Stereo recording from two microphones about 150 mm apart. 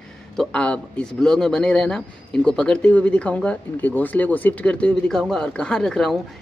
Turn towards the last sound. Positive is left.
turn(degrees=5)  # may be behind; listen again after turning